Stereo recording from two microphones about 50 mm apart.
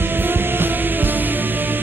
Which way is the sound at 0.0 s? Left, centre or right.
Right.